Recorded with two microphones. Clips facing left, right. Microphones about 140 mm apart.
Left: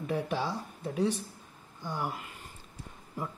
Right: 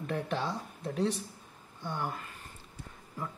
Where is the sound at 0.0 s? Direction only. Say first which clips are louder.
Left 2 dB; 10° left (ahead or behind).